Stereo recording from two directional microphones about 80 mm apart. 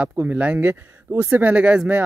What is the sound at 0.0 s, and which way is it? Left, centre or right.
Speech, right.